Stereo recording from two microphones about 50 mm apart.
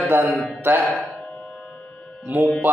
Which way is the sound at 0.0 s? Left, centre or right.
Right.